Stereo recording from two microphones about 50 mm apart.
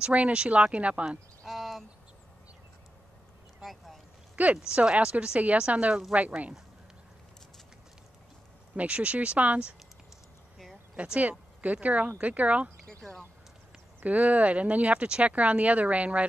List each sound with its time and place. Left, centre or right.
0.0 s speech: right
1.4 s cricket: centre
3.6 s boat: centre
4.4 s speech: right
8.7 s speech: right
11.1 s speech: right
12.8 s a sound: centre
14.0 s speech: right